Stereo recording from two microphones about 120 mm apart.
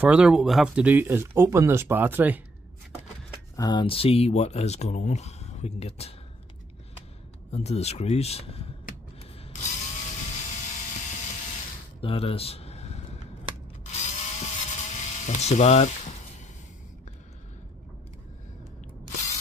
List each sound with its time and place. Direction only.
0.0 s speech: 5° right (ahead or behind)
3.5 s speech: 35° left (ahead or behind); by 6.1 s 60° left (ahead or behind)
7.5 s speech: 60° left (ahead or behind)
9.2 s a sound: 70° left (ahead or behind)
12.0 s a sound: 50° left (ahead or behind)
13.9 s electric toothbrush: 75° left (ahead or behind)